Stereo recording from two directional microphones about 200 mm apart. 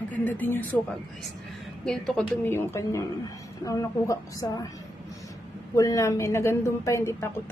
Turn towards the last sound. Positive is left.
turn(degrees=15)  # may be behind; listen again after turning